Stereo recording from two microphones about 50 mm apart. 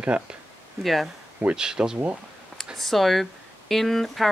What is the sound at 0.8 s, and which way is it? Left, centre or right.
Speech, centre.